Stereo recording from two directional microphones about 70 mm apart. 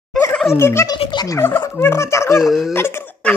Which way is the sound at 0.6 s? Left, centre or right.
Left.